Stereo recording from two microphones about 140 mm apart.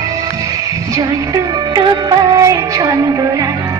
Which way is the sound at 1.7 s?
30° right (ahead or behind).